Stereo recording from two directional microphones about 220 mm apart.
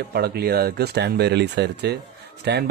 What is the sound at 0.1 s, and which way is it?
Speech, 45° right (ahead or behind).